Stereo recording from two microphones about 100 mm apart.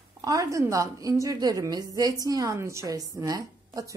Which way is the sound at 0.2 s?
35° right (ahead or behind).